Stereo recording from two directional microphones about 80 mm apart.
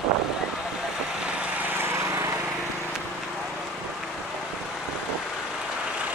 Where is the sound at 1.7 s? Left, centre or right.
Right.